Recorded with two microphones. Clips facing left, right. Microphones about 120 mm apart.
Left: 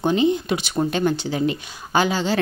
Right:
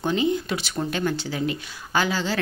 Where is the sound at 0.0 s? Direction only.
20° left (ahead or behind).